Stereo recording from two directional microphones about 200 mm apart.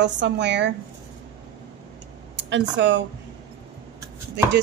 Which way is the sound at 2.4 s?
60° right (ahead or behind).